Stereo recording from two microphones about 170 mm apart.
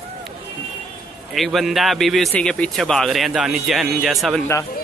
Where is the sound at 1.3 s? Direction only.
Centre (ahead or behind).